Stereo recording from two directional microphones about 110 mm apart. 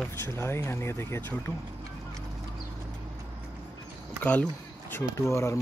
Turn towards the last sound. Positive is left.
turn(degrees=25)  # may be behind; listen again after turning